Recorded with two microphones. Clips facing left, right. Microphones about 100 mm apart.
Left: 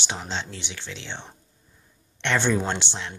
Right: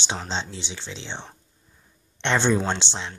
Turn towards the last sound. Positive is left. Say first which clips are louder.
# right 1 dB
turn(degrees=-20)  # may be behind; listen again after turning